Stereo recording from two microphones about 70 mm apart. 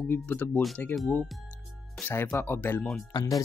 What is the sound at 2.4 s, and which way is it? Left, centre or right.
Speech, left.